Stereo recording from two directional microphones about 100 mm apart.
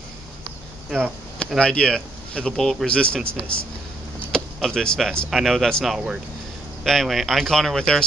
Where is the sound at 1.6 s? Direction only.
10° left (ahead or behind).